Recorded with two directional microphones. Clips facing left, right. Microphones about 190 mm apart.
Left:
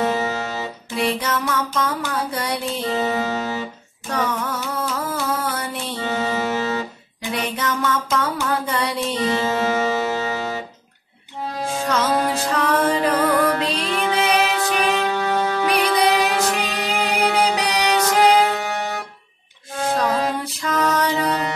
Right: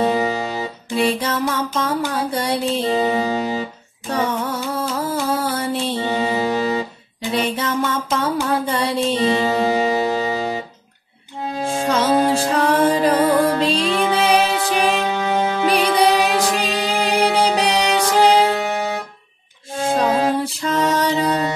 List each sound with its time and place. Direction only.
0.0 s music: 15° right (ahead or behind)
0.9 s music: 30° right (ahead or behind)
2.9 s music: 15° right (ahead or behind)
4.1 s a sound: 30° right (ahead or behind)
7.3 s music: 30° right (ahead or behind)
11.6 s music: 30° right (ahead or behind)
15.0 s music: 15° right (ahead or behind)
16.9 s music: 30° right (ahead or behind)
18.7 s music: 15° right (ahead or behind)
19.8 s music: 25° right (ahead or behind)